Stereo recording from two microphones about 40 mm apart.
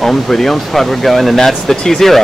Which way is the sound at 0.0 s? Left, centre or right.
Centre.